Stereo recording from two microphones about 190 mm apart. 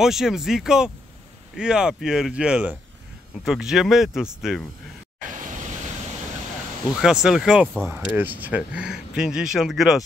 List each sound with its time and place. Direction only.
0.0 s speech: centre (ahead or behind)
7.0 s speech: 5° right (ahead or behind)